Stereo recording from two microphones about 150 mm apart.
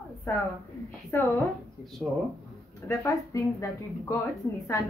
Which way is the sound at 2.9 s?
20° left (ahead or behind).